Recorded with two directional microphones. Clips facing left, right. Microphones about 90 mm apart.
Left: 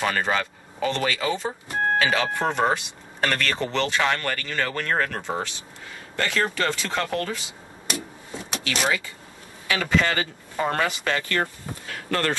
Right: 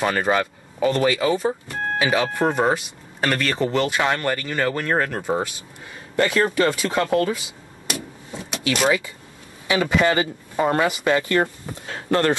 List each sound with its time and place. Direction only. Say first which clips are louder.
0.0 s speech: right 4 dB; 15° right (ahead or behind)
8.6 s a man's voice: right 6 dB; 20° right (ahead or behind)
11.8 s a sound: right 6 dB; 25° right (ahead or behind)